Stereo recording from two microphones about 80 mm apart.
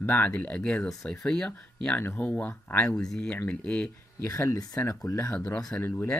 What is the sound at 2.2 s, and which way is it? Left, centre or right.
Speech, centre.